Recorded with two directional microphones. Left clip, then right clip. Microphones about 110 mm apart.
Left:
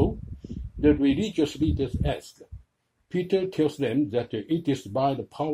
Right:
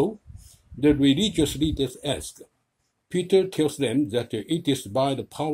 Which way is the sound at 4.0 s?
40° right (ahead or behind).